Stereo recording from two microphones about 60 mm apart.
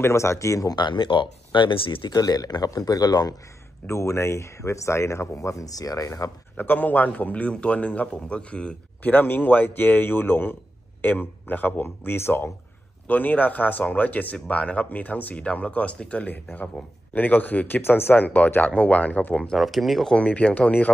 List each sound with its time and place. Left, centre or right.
0.0 s speech: left
2.1 s speech: left
3.8 s speech: left
6.5 s speech: left
9.1 s speech: left
13.0 s speech: left
19.5 s speech: centre
20.1 s speech: left